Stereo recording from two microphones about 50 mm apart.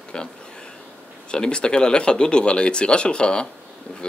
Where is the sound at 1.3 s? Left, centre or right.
Centre.